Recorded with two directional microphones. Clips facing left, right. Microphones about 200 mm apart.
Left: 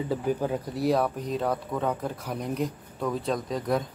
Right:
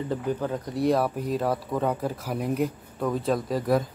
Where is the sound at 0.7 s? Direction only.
Centre (ahead or behind).